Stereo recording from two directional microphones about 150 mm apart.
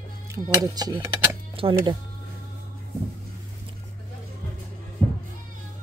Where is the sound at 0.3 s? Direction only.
25° right (ahead or behind).